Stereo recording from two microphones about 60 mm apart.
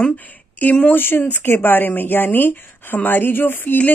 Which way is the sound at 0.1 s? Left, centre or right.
Left.